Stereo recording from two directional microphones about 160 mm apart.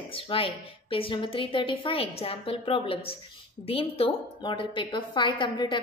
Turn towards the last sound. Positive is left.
turn(degrees=30)  # may be behind; listen again after turning